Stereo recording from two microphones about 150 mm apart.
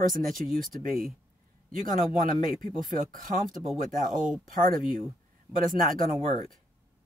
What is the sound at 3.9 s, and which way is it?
Speech, 65° right (ahead or behind).